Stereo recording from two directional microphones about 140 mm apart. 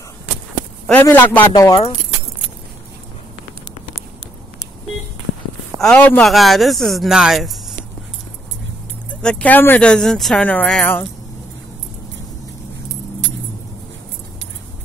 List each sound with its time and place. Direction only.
1.0 s speech: 15° left (ahead or behind)
1.5 s speech: 25° left (ahead or behind)
5.8 s speech: 10° left (ahead or behind)
6.2 s speech: centre (ahead or behind)
9.1 s speech: 10° left (ahead or behind)